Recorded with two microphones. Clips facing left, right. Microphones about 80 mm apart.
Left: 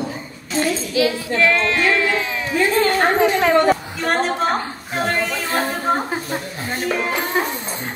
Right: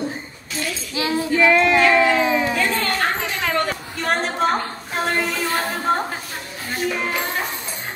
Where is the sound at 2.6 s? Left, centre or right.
Centre.